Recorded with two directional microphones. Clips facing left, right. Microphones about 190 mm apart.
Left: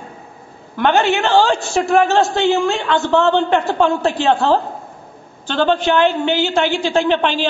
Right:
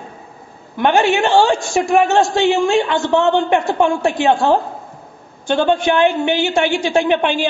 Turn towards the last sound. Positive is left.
turn(degrees=-15)  # may be behind; listen again after turning